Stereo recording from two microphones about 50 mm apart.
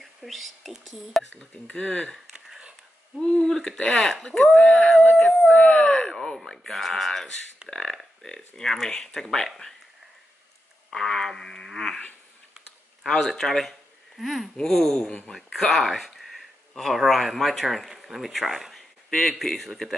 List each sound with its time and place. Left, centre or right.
0.0 s speech: centre
1.7 s speech: left
3.2 s speech: centre
5.6 s speech: centre
10.9 s speech: centre
13.0 s speech: centre
15.3 s speech: centre
19.0 s speech: centre